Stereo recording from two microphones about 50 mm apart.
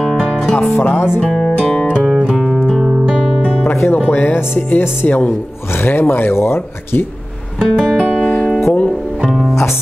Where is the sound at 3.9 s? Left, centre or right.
Left.